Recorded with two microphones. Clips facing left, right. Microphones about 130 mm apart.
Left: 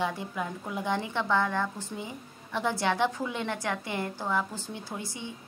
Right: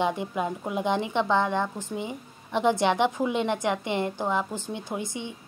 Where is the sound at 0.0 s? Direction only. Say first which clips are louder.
Right 5 dB; 20° right (ahead or behind).